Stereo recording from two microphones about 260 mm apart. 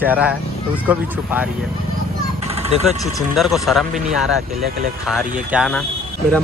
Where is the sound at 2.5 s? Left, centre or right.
Right.